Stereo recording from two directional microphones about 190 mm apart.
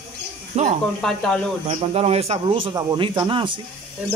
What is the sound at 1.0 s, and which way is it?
Speech, centre (ahead or behind).